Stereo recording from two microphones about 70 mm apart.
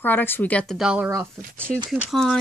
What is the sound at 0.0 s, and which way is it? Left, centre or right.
Speech, left.